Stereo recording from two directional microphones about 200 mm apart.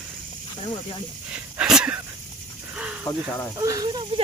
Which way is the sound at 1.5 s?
5° right (ahead or behind).